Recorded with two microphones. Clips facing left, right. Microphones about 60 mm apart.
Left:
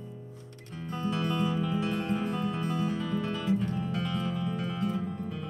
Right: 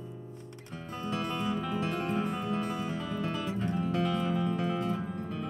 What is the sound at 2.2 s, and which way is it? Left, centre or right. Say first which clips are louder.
Music: left 1 dB; centre.